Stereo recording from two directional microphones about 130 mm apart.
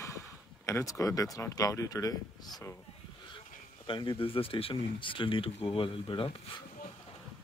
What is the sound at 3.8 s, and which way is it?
Speech, 40° left (ahead or behind).